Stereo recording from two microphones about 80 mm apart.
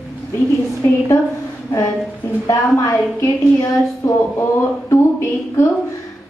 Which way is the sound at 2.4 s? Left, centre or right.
Left.